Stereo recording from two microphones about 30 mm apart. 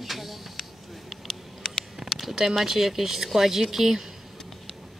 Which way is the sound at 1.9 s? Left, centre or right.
Centre.